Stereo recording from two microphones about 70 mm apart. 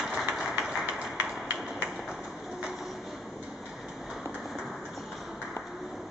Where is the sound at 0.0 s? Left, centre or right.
Centre.